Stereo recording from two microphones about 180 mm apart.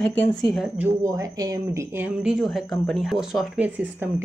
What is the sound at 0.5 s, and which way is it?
Speech, 5° right (ahead or behind).